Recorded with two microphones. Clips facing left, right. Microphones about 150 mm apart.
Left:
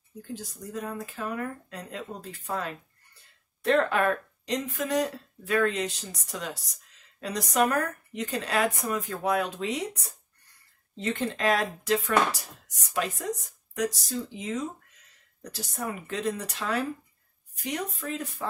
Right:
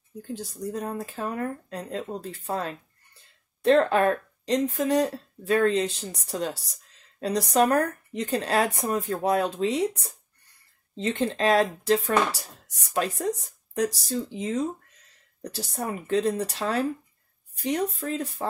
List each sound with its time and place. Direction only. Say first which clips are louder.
0.3 s speech: right 5 dB; 30° right (ahead or behind)